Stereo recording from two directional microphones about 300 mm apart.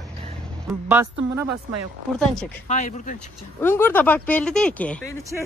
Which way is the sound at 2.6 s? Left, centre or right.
Left.